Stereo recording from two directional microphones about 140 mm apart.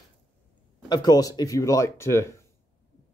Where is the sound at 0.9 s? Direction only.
30° left (ahead or behind).